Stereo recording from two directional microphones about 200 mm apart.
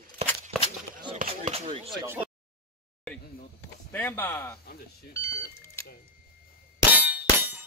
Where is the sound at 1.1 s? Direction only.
45° right (ahead or behind).